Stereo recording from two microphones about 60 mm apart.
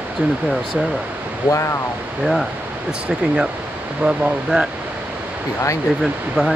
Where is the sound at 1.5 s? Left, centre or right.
Left.